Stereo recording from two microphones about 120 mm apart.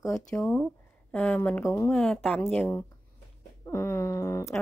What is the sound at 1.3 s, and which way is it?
Speech, 15° left (ahead or behind).